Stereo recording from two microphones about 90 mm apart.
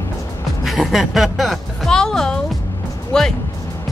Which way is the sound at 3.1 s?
5° left (ahead or behind).